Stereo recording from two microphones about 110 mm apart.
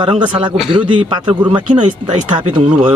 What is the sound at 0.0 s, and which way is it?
A man's voice, 45° right (ahead or behind).